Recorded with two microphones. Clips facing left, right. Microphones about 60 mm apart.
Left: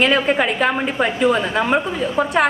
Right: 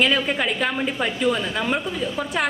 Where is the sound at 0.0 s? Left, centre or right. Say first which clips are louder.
Left 5 dB; left.